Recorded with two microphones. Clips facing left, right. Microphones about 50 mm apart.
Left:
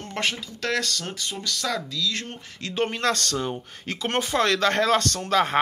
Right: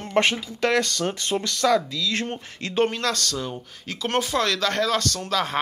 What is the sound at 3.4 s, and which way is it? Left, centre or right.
Speech, left.